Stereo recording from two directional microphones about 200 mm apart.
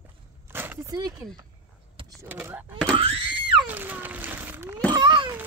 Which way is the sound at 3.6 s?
10° right (ahead or behind).